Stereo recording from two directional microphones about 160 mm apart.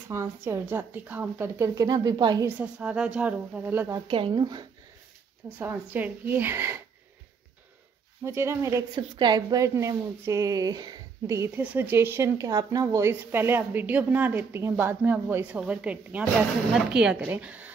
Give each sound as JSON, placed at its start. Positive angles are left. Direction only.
{"t": 0.1, "sound": "a woman's voice", "side_deg": -15}
{"t": 2.4, "sound": "a woman's voice", "side_deg": -10}
{"t": 4.1, "sound": "speech", "side_deg": -30}
{"t": 5.6, "sound": "a woman's voice", "side_deg": -10}
{"t": 8.2, "sound": "a woman's voice", "side_deg": -15}